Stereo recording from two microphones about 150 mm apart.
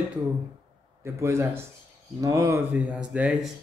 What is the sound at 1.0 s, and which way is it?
Speech, 15° right (ahead or behind).